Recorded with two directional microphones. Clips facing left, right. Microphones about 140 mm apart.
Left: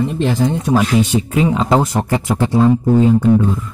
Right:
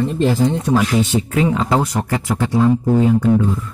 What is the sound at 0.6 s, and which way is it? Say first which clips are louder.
Speech: left 2 dB; 15° left (ahead or behind).